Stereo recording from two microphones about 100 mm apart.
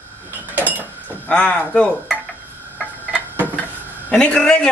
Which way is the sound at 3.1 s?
15° right (ahead or behind).